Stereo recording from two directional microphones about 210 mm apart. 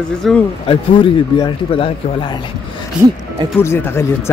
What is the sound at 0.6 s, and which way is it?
Speech, 25° left (ahead or behind).